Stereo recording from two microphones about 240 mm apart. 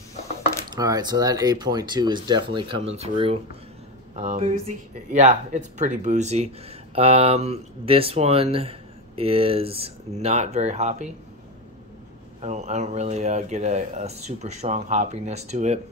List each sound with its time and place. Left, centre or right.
0.7 s speech: centre
12.4 s speech: right